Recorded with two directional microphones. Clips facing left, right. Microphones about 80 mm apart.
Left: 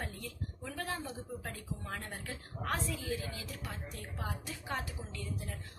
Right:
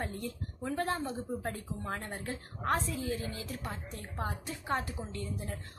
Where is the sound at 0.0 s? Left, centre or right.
Right.